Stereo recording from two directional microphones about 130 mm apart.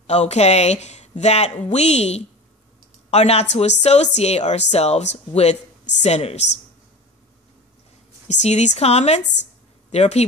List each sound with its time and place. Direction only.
0.0 s a woman's voice: 55° left (ahead or behind)
8.3 s a woman's voice: 60° left (ahead or behind)